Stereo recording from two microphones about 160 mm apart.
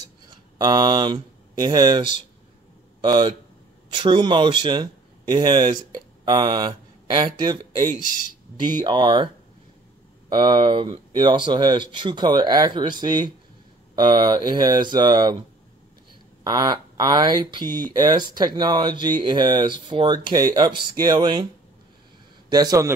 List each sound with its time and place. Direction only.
0.3 s speech: 25° right (ahead or behind)
10.3 s speech: 25° right (ahead or behind)
16.4 s speech: 25° right (ahead or behind)
22.5 s speech: 25° right (ahead or behind)